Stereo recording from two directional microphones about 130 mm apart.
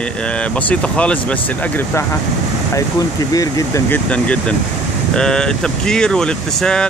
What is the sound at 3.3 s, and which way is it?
Speech, 25° left (ahead or behind).